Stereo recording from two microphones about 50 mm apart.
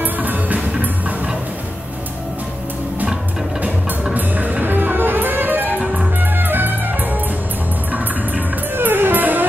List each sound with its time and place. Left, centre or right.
0.0 s music: right
4.1 s music: right
8.7 s music: right